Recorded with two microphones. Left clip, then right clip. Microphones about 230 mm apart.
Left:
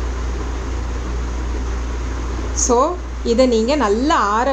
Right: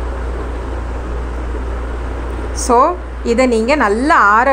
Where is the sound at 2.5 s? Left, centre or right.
Centre.